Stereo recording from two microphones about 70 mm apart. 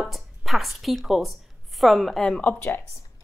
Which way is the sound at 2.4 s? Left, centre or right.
Left.